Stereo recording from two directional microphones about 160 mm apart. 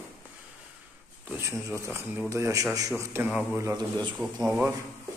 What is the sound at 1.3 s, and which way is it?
A man's voice, 15° right (ahead or behind).